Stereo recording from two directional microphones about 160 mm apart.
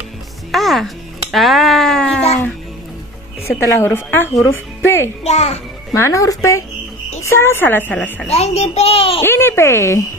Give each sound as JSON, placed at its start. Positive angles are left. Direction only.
{"t": 0.5, "sound": "speech", "side_deg": 0}
{"t": 3.5, "sound": "speech", "side_deg": 15}
{"t": 5.2, "sound": "a child's voice", "side_deg": 40}
{"t": 5.9, "sound": "speech", "side_deg": 15}
{"t": 8.3, "sound": "a child's voice", "side_deg": 40}
{"t": 9.2, "sound": "speech", "side_deg": 15}